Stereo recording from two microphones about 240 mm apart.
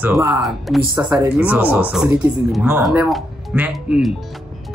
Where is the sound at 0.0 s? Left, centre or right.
Centre.